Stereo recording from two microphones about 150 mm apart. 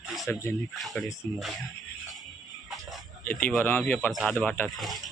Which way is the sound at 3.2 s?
10° left (ahead or behind).